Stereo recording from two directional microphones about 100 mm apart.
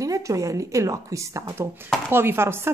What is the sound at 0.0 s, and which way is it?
Speech, 35° right (ahead or behind).